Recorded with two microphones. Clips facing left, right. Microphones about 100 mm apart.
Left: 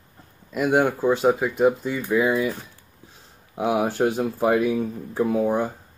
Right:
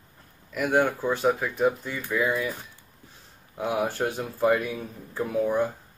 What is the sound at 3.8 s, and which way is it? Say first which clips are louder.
Speech: left 5 dB; 25° left (ahead or behind).